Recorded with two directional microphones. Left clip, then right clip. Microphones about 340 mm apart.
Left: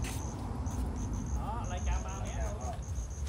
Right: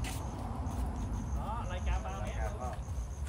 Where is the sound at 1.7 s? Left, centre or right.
Centre.